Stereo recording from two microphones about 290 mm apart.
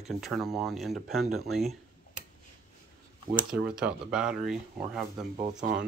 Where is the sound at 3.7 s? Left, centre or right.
Centre.